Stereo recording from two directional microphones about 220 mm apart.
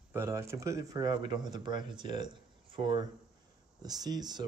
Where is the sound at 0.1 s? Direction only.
10° right (ahead or behind).